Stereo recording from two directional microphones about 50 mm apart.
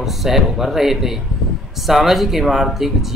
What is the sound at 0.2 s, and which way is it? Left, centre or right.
Speech, centre.